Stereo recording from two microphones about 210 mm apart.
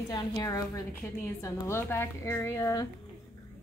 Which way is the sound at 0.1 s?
20° left (ahead or behind).